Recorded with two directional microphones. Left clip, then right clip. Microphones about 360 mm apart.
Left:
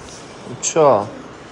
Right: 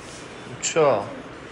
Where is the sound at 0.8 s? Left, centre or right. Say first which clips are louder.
Left 6 dB; centre.